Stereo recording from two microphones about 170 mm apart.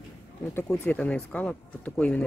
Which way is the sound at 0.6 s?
5° left (ahead or behind).